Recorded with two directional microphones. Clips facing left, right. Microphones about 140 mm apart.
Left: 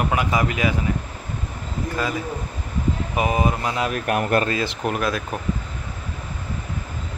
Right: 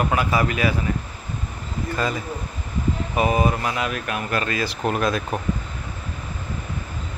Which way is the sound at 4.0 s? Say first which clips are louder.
Left 5 dB; 55° left (ahead or behind).